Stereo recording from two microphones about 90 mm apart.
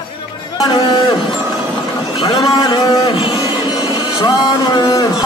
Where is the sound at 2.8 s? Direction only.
45° left (ahead or behind).